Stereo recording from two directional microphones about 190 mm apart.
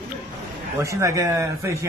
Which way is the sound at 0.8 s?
15° right (ahead or behind).